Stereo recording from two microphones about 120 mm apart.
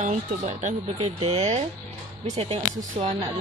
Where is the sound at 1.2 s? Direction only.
65° right (ahead or behind).